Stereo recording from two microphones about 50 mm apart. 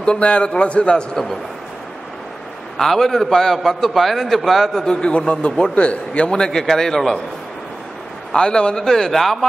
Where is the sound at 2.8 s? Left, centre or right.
Centre.